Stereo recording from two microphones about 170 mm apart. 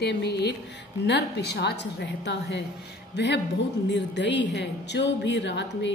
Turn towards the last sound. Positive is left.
turn(degrees=90)